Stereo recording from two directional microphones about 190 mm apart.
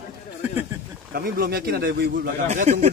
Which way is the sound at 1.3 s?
55° right (ahead or behind).